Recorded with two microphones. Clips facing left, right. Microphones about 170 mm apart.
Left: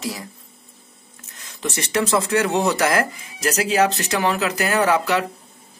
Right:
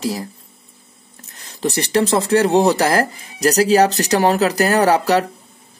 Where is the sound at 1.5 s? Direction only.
35° right (ahead or behind).